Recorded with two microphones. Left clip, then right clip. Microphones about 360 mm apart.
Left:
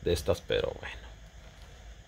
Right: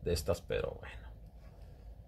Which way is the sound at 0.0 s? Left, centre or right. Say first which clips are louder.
Left 6 dB; left.